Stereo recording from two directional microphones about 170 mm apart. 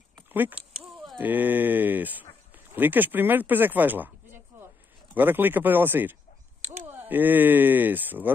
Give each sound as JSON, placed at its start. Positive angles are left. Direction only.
{"t": 0.3, "sound": "speech", "side_deg": -10}